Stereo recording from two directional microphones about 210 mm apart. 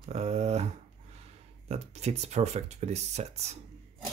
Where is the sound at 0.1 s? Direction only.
30° right (ahead or behind).